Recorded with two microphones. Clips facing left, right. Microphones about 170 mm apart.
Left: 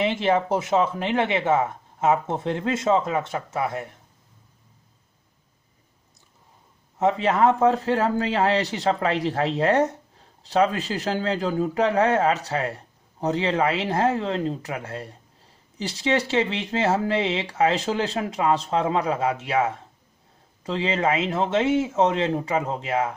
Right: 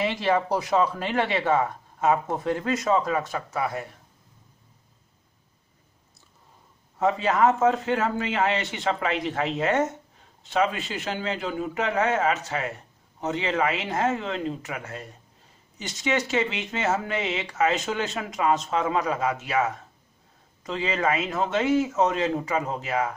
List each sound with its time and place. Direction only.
0.0 s speech: 20° left (ahead or behind)
7.0 s speech: 25° left (ahead or behind)